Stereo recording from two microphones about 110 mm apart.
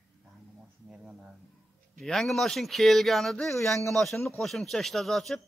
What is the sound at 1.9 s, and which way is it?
Speech, centre (ahead or behind).